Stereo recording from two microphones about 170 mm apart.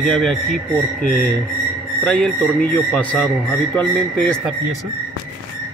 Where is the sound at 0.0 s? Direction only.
Centre (ahead or behind).